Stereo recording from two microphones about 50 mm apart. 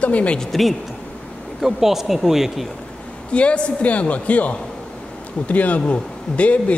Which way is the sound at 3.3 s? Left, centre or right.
Left.